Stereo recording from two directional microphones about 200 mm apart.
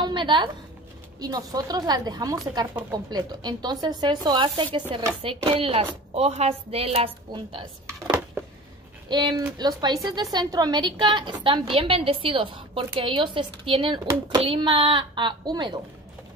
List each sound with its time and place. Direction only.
0.0 s a sound: 25° right (ahead or behind)
1.2 s a woman's voice: 20° right (ahead or behind)
9.1 s a woman's voice: 20° right (ahead or behind)